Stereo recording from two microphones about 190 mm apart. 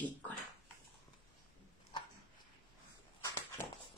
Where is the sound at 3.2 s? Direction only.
15° left (ahead or behind).